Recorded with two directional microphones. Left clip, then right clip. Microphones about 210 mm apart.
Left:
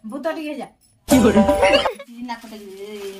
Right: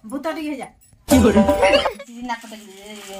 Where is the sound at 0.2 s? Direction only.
25° right (ahead or behind).